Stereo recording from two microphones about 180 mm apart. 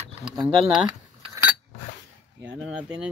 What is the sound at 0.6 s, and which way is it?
Speech, 5° right (ahead or behind).